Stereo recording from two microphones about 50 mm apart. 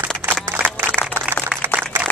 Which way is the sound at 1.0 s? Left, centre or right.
Left.